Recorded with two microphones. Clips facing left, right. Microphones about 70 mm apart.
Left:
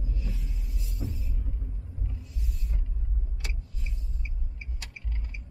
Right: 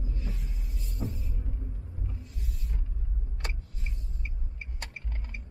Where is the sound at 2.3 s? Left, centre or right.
Right.